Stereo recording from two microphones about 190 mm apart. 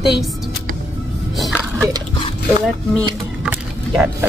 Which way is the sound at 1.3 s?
Centre (ahead or behind).